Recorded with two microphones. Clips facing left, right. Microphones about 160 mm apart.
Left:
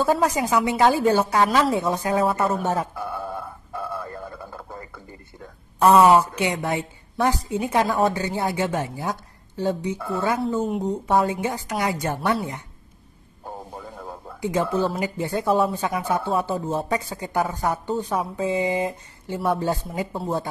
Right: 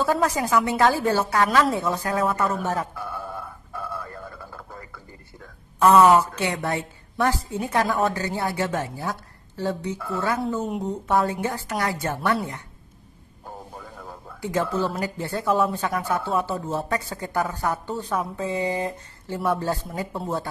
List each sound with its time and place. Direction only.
0.0 s a woman's voice: 15° left (ahead or behind)
3.7 s a sound: 20° left (ahead or behind)
5.9 s a woman's voice: 15° left (ahead or behind)
10.6 s a woman's voice: centre (ahead or behind)
11.1 s a woman's voice: 15° left (ahead or behind)
13.7 s a sound: 20° left (ahead or behind)
15.0 s a woman's voice: 15° left (ahead or behind)